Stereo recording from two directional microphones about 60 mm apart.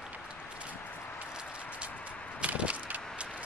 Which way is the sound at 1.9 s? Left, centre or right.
Left.